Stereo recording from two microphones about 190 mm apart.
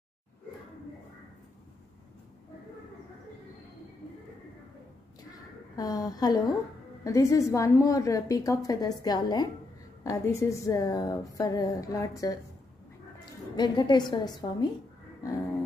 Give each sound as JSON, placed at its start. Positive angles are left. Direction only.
{"t": 5.8, "sound": "a woman's voice", "side_deg": 20}
{"t": 13.2, "sound": "music", "side_deg": 25}
{"t": 14.1, "sound": "speech", "side_deg": 20}